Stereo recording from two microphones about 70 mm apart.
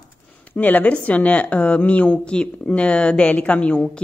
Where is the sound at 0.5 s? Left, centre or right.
Left.